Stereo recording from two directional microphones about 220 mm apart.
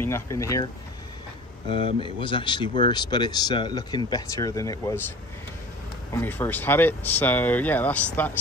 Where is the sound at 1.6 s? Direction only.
25° left (ahead or behind).